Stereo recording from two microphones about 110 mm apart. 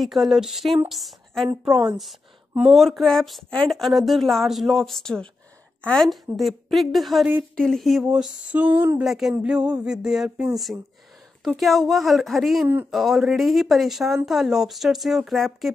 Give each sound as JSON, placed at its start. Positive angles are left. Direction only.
{"t": 0.0, "sound": "a woman's voice", "side_deg": 0}
{"t": 1.7, "sound": "a woman's voice", "side_deg": -35}
{"t": 2.8, "sound": "speech", "side_deg": 0}